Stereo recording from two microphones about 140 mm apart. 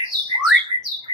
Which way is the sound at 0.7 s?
35° left (ahead or behind).